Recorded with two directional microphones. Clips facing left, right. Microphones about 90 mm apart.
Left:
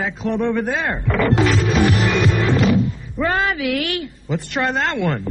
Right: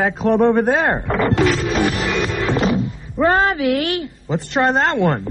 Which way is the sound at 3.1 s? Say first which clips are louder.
Right 5 dB; 40° right (ahead or behind).